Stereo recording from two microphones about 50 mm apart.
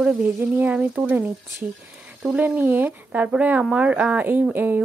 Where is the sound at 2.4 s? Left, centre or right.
Right.